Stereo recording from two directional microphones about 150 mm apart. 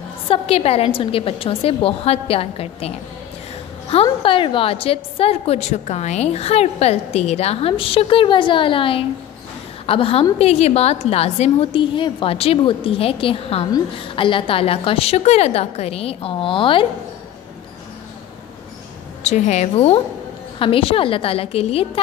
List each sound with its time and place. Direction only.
0.3 s a woman's voice: 40° left (ahead or behind)
3.9 s a woman's voice: 35° left (ahead or behind)
19.2 s a woman's voice: 50° left (ahead or behind)